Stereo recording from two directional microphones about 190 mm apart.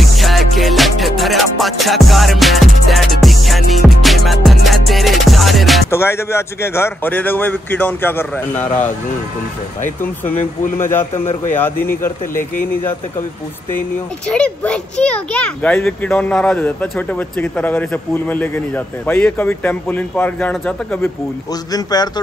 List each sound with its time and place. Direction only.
0.0 s music: centre (ahead or behind)
5.9 s a child's voice: 15° left (ahead or behind)
10.8 s a child's voice: 10° left (ahead or behind)
14.2 s a child's voice: 5° left (ahead or behind)
21.7 s a man's voice: 20° left (ahead or behind)